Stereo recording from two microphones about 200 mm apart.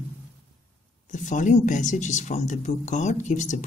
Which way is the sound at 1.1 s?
40° left (ahead or behind).